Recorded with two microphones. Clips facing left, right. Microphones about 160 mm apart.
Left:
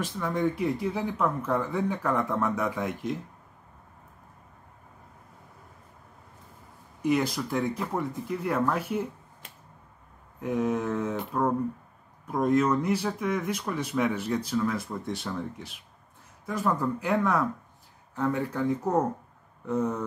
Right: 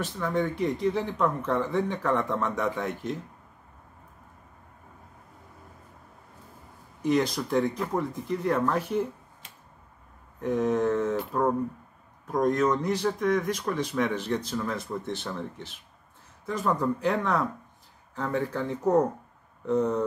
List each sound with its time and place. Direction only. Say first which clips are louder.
0.0 s speech: even; 10° left (ahead or behind)
7.0 s speech: right 1 dB; 10° left (ahead or behind)
10.4 s speech: right 3 dB; 10° left (ahead or behind)